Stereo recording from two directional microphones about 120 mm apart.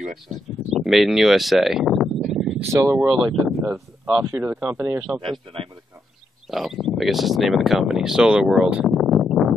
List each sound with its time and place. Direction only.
0.7 s a sound: centre (ahead or behind)
2.7 s speech: 25° right (ahead or behind)
3.1 s speech: 5° right (ahead or behind)
4.3 s speech: 20° right (ahead or behind)
5.0 s speech: 5° right (ahead or behind)
6.5 s speech: centre (ahead or behind)